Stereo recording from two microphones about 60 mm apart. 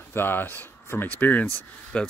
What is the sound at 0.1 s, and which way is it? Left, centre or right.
Speech, left.